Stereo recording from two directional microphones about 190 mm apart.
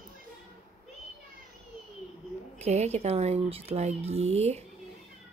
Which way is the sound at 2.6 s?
35° right (ahead or behind).